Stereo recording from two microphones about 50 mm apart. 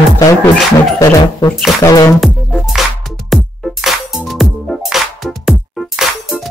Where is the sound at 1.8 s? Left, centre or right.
Left.